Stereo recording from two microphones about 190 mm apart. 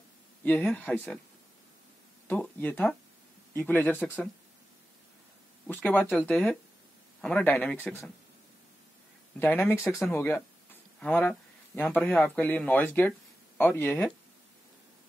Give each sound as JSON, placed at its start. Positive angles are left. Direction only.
{"t": 0.4, "sound": "speech", "side_deg": 10}
{"t": 2.2, "sound": "speech", "side_deg": 10}
{"t": 5.7, "sound": "speech", "side_deg": 10}
{"t": 9.4, "sound": "speech", "side_deg": 10}